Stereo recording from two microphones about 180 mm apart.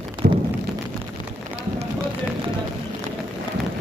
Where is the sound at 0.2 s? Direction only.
60° right (ahead or behind).